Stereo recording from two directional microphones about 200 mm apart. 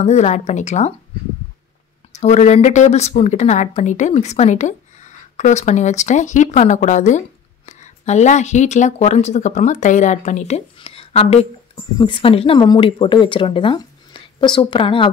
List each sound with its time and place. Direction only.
0.0 s a woman's voice: 35° left (ahead or behind)
2.1 s a woman's voice: 35° left (ahead or behind)